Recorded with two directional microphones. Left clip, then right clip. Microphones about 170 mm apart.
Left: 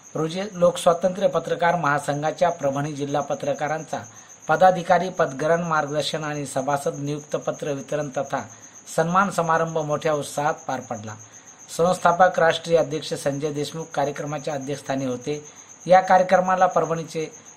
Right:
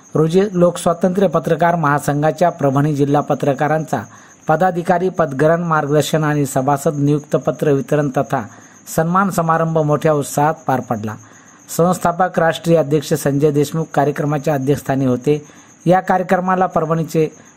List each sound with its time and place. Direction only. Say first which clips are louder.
0.1 s speech: right 12 dB; 40° right (ahead or behind)